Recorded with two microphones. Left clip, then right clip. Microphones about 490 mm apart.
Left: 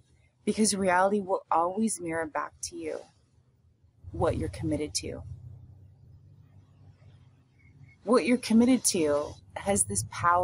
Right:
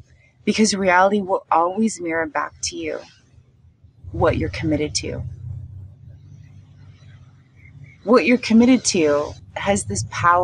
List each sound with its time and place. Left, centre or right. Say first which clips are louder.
0.5 s speech: right 9 dB; left
4.2 s speech: right 10 dB; left
8.0 s speech: right 9 dB; left